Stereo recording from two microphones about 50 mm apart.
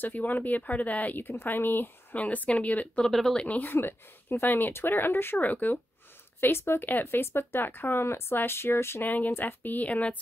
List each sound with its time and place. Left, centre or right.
0.0 s speech: left
2.1 s a woman's voice: left
3.0 s speech: centre
3.4 s speech: left
3.7 s speech: left
6.4 s speech: left
9.0 s speech: left